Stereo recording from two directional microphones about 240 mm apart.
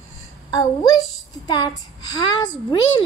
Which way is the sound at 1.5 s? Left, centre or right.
Centre.